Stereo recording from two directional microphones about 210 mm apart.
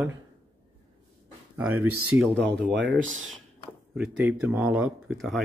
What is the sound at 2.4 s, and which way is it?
Speech, 55° right (ahead or behind).